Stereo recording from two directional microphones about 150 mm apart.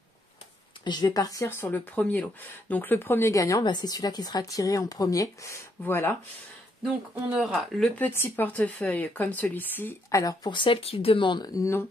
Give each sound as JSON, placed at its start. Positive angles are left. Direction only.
{"t": 0.8, "sound": "speech", "side_deg": 30}
{"t": 7.2, "sound": "speech", "side_deg": -5}
{"t": 8.0, "sound": "speech", "side_deg": 15}